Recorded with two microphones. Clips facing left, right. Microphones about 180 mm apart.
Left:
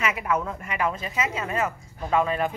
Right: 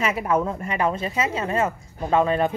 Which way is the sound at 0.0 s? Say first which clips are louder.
Right 4 dB; 30° right (ahead or behind).